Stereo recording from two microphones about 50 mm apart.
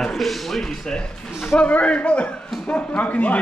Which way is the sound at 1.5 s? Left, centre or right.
Left.